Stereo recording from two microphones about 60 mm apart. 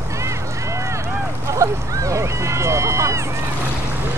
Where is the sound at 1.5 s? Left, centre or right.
Right.